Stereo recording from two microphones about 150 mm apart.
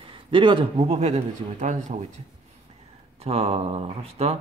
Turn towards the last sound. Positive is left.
turn(degrees=-45)  # may be behind; listen again after turning